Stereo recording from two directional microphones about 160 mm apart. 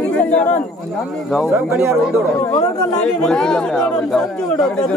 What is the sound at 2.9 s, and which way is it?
Speech, 5° left (ahead or behind).